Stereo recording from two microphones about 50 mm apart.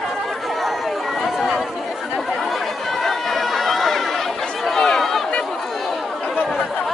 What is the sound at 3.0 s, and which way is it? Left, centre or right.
Run, centre.